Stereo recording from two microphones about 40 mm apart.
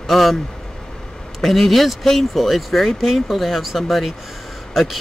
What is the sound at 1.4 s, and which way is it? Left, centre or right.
Speech, centre.